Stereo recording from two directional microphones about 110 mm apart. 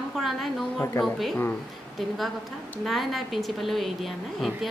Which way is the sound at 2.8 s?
Centre (ahead or behind).